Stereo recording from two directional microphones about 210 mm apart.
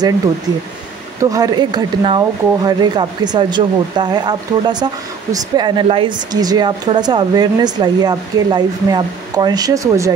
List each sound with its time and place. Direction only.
1.3 s speech: 20° right (ahead or behind)